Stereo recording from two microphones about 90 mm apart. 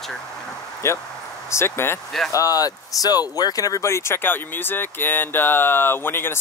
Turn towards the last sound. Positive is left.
turn(degrees=25)  # may be behind; listen again after turning